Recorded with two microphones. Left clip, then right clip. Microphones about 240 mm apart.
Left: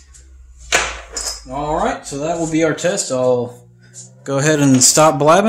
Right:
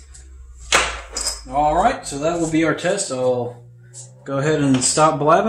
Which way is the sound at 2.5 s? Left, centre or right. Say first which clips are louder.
Left 2 dB; left.